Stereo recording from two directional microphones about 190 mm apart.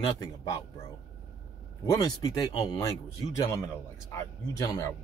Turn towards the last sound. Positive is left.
turn(degrees=15)  # may be behind; listen again after turning